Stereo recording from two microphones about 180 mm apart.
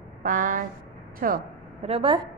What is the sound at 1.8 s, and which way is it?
Speech, 30° right (ahead or behind).